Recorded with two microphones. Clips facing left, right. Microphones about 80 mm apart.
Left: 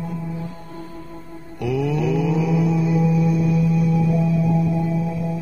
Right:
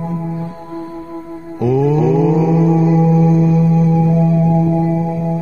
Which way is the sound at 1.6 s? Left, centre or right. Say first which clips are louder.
Right 8 dB; right.